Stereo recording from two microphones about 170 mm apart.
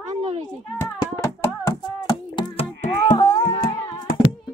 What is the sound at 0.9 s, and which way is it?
Music, 20° left (ahead or behind).